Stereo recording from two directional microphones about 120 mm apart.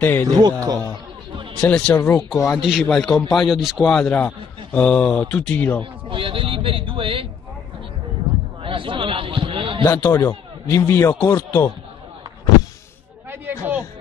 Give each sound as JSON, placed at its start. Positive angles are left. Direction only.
{"t": 0.0, "sound": "speech", "side_deg": 15}
{"t": 0.3, "sound": "a man's voice", "side_deg": -35}
{"t": 1.6, "sound": "speech", "side_deg": 5}
{"t": 2.5, "sound": "a man's voice", "side_deg": 0}
{"t": 6.0, "sound": "speech", "side_deg": -45}
{"t": 8.6, "sound": "a sound", "side_deg": -45}
{"t": 10.2, "sound": "speech", "side_deg": 25}
{"t": 11.1, "sound": "speech", "side_deg": 35}
{"t": 13.3, "sound": "a sound", "side_deg": -15}